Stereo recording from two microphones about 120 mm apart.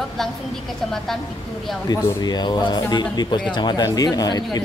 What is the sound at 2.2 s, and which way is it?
Speech, 35° left (ahead or behind).